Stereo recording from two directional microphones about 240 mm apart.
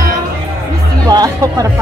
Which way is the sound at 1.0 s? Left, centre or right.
Centre.